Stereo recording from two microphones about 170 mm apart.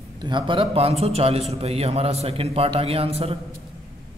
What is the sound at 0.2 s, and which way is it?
A man's voice, 25° right (ahead or behind).